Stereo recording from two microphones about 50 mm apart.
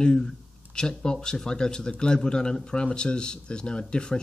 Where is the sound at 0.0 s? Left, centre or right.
Centre.